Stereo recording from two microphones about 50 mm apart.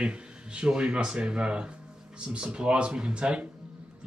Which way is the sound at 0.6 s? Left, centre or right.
Centre.